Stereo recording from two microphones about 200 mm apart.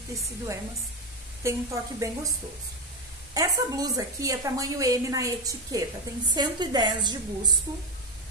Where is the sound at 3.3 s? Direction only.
15° right (ahead or behind).